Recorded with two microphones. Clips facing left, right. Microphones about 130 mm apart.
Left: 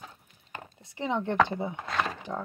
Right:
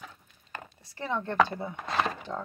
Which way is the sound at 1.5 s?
20° left (ahead or behind).